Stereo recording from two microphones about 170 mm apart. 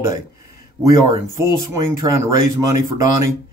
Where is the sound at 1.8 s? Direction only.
20° right (ahead or behind).